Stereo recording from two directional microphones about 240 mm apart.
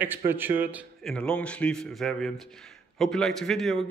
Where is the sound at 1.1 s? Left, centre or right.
Centre.